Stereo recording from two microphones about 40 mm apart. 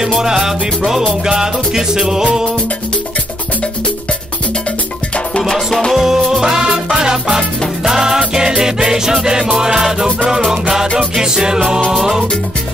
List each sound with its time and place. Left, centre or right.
0.2 s music: centre
5.5 s music: centre
5.9 s music: centre